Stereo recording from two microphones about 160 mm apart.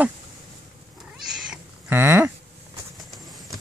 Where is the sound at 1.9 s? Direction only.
15° right (ahead or behind).